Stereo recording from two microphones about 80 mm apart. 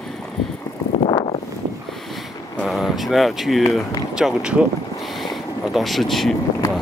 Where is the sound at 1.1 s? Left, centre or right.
Left.